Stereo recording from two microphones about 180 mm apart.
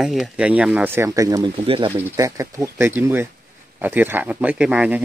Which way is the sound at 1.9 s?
15° right (ahead or behind).